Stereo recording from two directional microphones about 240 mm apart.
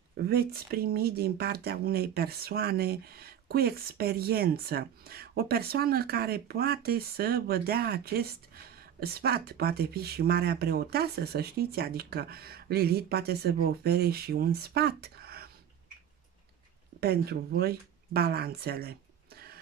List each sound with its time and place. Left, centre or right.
0.2 s speech: right
17.0 s speech: right